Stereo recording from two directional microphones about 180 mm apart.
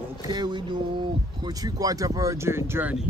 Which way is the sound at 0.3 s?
25° right (ahead or behind).